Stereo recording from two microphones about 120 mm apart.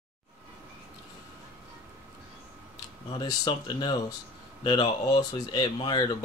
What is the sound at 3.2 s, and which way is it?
Speech, 35° left (ahead or behind).